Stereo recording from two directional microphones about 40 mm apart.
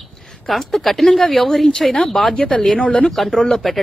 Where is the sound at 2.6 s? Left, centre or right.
Left.